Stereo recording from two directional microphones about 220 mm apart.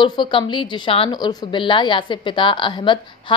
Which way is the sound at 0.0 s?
20° left (ahead or behind).